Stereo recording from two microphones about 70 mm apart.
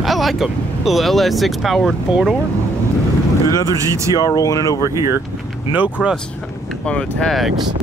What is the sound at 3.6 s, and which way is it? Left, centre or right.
Speech, right.